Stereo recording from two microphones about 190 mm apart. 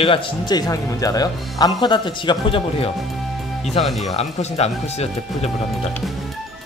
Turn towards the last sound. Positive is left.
turn(degrees=35)  # may be behind; listen again after turning